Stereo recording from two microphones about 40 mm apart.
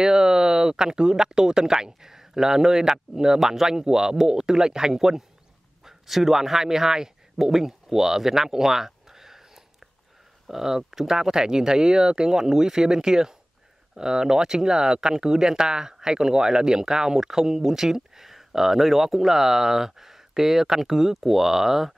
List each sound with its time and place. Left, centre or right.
0.0 s a man's voice: centre
10.4 s speech: centre